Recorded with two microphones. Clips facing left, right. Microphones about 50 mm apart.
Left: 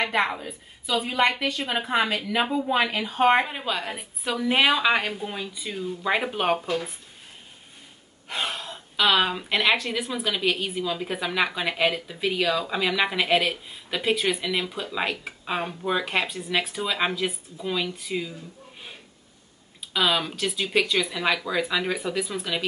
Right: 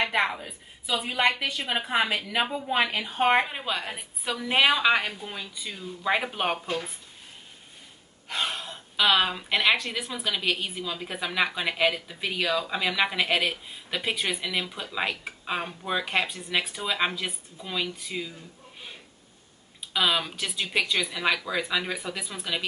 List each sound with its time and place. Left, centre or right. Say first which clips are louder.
0.0 s speech: left 1 dB; centre
8.3 s speech: left 1 dB; centre
19.9 s speech: left 2 dB; centre